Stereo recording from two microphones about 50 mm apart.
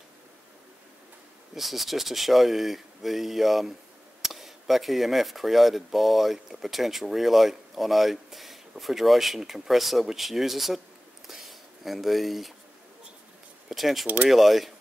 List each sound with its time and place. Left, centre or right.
1.5 s speech: centre
13.7 s speech: centre
14.0 s speech: right
14.3 s speech: centre